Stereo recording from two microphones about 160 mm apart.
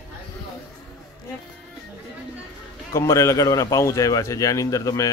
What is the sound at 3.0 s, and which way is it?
Speech, 20° left (ahead or behind).